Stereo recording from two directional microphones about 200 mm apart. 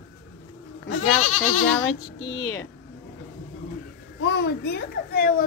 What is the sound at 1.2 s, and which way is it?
Speech, 35° left (ahead or behind).